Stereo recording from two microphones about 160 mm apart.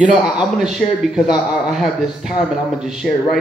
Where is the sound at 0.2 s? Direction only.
5° right (ahead or behind).